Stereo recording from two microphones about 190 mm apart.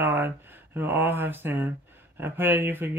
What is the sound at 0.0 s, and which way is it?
Speech, 10° right (ahead or behind).